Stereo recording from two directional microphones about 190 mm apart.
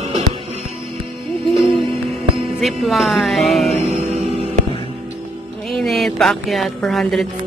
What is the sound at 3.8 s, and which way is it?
Music, 35° right (ahead or behind).